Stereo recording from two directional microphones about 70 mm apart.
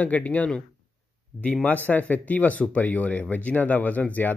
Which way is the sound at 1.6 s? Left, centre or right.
Left.